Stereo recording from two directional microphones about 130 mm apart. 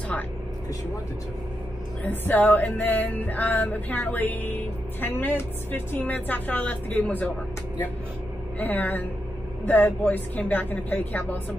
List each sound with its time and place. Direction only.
2.0 s music: 15° left (ahead or behind)
8.5 s music: 15° left (ahead or behind)